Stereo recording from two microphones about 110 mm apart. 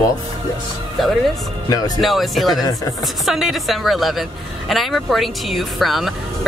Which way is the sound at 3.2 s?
Centre (ahead or behind).